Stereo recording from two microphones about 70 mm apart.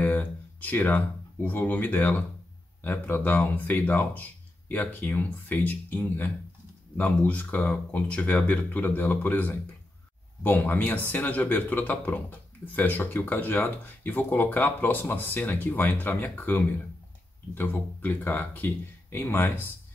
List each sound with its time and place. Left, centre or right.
0.0 s speech: left